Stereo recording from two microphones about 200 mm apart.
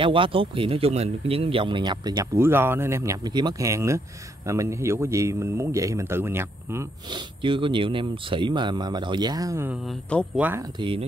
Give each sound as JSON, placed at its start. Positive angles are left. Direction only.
{"t": 0.0, "sound": "a man's voice", "side_deg": -25}
{"t": 9.8, "sound": "speech", "side_deg": 5}
{"t": 10.3, "sound": "a man's voice", "side_deg": -10}
{"t": 10.6, "sound": "speech", "side_deg": -25}